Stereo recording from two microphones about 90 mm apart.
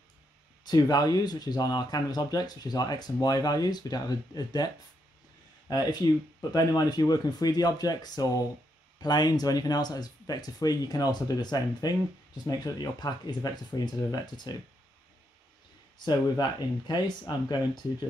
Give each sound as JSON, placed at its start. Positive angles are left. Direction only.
{"t": 0.7, "sound": "speech", "side_deg": 45}
{"t": 5.7, "sound": "speech", "side_deg": 50}
{"t": 16.0, "sound": "speech", "side_deg": 50}